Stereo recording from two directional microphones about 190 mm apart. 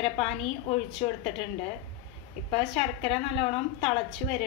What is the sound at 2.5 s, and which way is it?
A woman's voice, 35° left (ahead or behind).